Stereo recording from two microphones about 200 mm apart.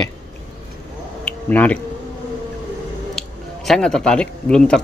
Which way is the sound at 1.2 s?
5° left (ahead or behind).